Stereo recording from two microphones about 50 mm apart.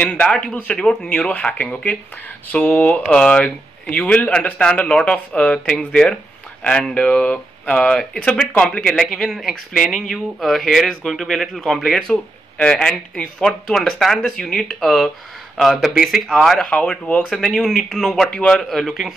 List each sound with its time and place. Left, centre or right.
0.0 s speech: left
8.9 s speech: centre
9.4 s a man's voice: centre
15.7 s a man's voice: centre
16.5 s speech: left
17.3 s speech: centre
18.3 s speech: left
18.6 s a man's voice: centre